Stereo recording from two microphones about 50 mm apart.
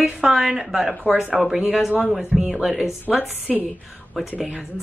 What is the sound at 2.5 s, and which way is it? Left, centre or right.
Speech, centre.